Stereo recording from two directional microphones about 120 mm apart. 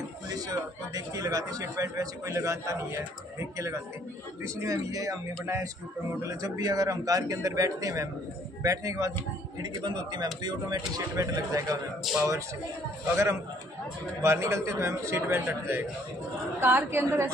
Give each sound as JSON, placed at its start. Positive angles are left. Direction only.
{"t": 0.3, "sound": "a man's voice", "side_deg": -30}
{"t": 12.1, "sound": "speech", "side_deg": 0}
{"t": 13.1, "sound": "a man's voice", "side_deg": -20}